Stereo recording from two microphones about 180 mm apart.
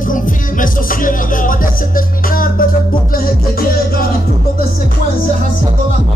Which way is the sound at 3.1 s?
55° left (ahead or behind).